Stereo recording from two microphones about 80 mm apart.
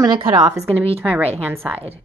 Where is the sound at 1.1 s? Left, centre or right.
Centre.